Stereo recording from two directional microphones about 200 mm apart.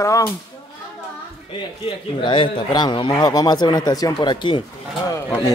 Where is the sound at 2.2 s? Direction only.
25° left (ahead or behind).